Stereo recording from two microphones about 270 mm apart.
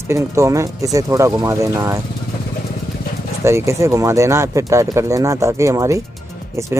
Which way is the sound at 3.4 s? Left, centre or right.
Centre.